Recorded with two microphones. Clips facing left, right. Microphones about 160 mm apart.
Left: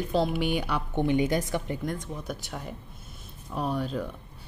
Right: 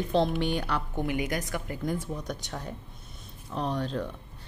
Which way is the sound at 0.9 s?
30° left (ahead or behind).